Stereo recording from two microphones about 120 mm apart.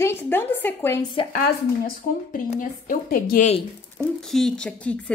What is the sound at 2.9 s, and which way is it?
Speech, 90° left.